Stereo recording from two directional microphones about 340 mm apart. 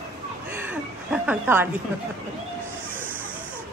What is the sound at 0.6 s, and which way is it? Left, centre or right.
Speech, centre.